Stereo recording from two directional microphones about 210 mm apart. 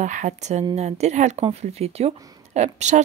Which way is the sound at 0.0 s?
35° right (ahead or behind).